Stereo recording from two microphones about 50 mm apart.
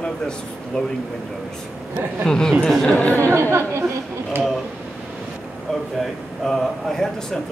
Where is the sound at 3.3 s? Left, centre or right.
Right.